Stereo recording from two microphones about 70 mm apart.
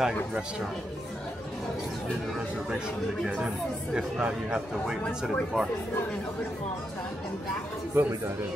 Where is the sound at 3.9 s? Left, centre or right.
Centre.